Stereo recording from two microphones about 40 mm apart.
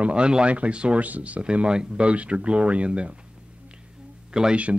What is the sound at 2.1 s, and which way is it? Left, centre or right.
Speech, right.